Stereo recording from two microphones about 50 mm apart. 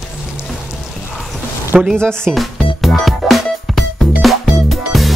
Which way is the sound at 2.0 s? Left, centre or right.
Centre.